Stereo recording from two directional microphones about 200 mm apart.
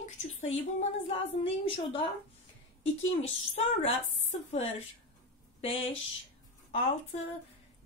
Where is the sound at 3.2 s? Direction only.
35° left (ahead or behind).